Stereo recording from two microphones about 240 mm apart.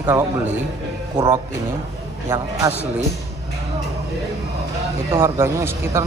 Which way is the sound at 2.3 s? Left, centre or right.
Centre.